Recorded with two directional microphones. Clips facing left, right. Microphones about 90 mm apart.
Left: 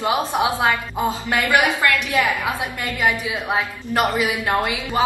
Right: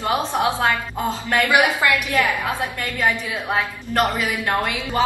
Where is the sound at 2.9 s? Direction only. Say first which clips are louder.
Left 1 dB; 10° left (ahead or behind).